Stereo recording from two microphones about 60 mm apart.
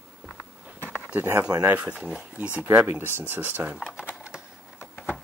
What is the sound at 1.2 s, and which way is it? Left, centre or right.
Speech, right.